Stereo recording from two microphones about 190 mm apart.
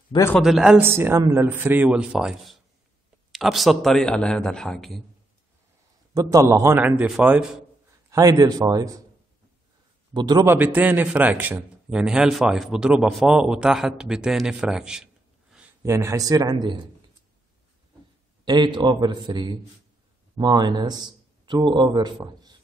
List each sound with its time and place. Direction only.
0.4 s a man's voice: centre (ahead or behind)
6.1 s speech: 15° right (ahead or behind)
8.1 s a man's voice: 20° right (ahead or behind)
10.1 s a man's voice: 20° right (ahead or behind)
18.4 s a man's voice: 25° right (ahead or behind)